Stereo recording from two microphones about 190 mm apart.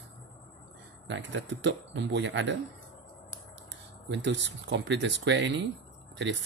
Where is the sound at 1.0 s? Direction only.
75° right (ahead or behind).